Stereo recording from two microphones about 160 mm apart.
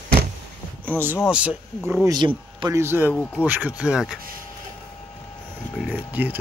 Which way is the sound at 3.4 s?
10° right (ahead or behind).